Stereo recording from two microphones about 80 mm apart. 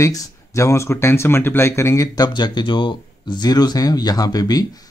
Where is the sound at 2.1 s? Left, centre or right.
Left.